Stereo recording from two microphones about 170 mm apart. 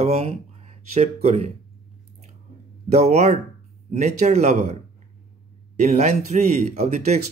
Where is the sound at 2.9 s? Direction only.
45° right (ahead or behind).